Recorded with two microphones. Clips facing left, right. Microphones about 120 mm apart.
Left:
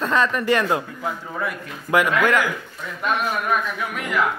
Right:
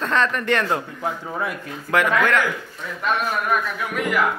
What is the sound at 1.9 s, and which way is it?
Speech, 15° left (ahead or behind).